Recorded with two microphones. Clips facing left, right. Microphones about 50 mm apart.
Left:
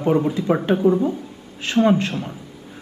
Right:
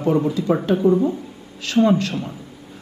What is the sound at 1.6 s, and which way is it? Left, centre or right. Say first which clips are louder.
Speech: even; left.